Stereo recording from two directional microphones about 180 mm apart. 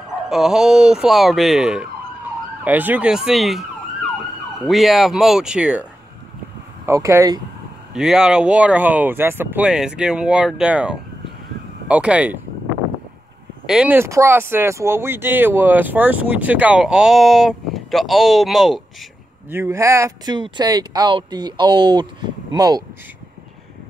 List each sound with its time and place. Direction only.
0.3 s speech: 5° right (ahead or behind)
4.6 s speech: centre (ahead or behind)
6.9 s speech: 15° right (ahead or behind)
7.9 s speech: 5° right (ahead or behind)
13.7 s speech: 5° right (ahead or behind)
19.5 s speech: 15° right (ahead or behind)